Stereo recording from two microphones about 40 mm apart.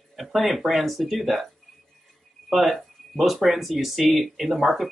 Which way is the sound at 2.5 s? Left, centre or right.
Centre.